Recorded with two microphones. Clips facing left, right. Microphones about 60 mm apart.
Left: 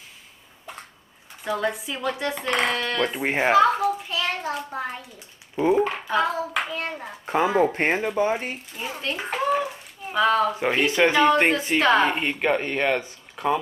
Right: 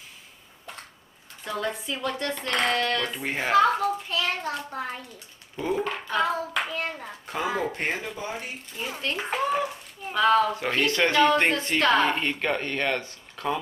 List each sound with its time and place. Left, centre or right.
1.4 s a woman's voice: centre
3.1 s speech: left
3.5 s a child's voice: centre
5.6 s speech: left
5.9 s a child's voice: centre
7.2 s speech: left
8.7 s speech: centre
10.5 s a woman's voice: centre